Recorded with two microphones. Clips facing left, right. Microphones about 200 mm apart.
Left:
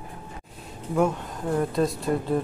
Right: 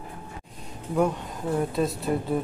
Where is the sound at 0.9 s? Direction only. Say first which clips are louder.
Left 1 dB; centre (ahead or behind).